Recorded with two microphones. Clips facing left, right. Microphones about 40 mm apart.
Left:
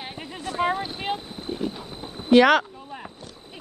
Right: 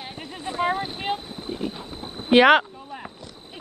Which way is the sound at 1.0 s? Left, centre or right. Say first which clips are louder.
Right 1 dB; centre.